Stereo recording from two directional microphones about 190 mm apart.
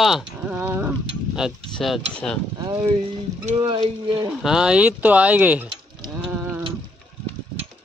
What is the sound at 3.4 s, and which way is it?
Speech, 30° right (ahead or behind).